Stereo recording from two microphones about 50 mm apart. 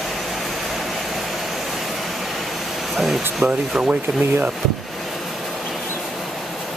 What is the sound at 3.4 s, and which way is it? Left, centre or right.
Speech, right.